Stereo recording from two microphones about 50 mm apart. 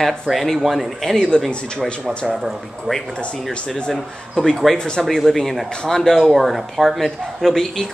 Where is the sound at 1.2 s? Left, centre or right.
Centre.